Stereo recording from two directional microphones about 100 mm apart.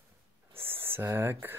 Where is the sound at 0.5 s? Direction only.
20° right (ahead or behind).